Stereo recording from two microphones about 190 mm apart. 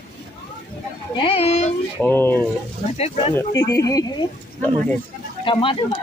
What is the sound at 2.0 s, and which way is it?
Speech, 10° left (ahead or behind).